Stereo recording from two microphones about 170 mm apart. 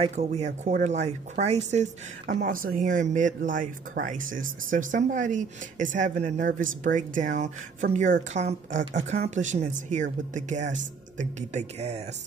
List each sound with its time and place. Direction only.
0.0 s speech: 40° right (ahead or behind)